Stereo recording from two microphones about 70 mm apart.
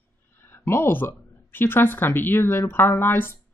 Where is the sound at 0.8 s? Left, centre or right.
Left.